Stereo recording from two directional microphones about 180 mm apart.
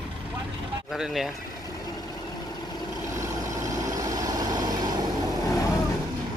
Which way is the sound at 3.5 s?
20° right (ahead or behind).